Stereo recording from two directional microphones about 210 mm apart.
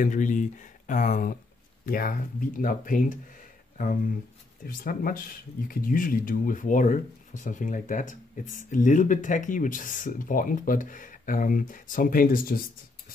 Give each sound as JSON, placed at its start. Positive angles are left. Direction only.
{"t": 0.0, "sound": "speech", "side_deg": 40}
{"t": 4.6, "sound": "speech", "side_deg": 40}